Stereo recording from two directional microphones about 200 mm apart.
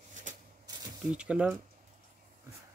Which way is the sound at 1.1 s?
5° right (ahead or behind).